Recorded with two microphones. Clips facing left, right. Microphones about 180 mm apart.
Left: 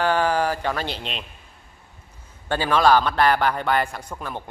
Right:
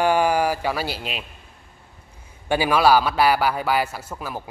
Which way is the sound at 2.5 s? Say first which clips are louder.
Right 1 dB; 10° right (ahead or behind).